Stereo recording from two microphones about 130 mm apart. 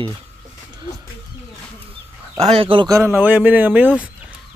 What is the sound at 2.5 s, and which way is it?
Speech, 45° right (ahead or behind).